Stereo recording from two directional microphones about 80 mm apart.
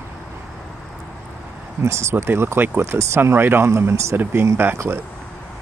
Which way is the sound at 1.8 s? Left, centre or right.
Right.